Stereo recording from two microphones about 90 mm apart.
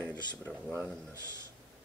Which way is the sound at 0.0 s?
20° left (ahead or behind).